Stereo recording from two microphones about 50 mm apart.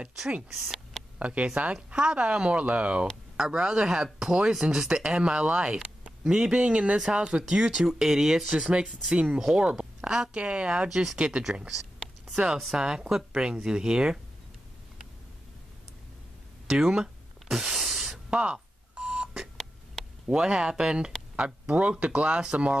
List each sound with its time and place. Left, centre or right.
1.1 s speech: right
3.3 s speech: centre
16.6 s a sound: centre
18.3 s telephone dialing: right
19.5 s a sound: centre
20.2 s speech: centre